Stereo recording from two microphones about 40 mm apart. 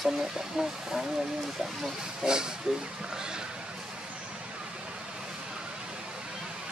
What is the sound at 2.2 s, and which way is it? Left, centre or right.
Speech, centre.